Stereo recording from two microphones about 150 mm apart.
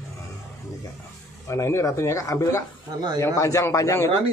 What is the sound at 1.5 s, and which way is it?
Speech, 20° left (ahead or behind).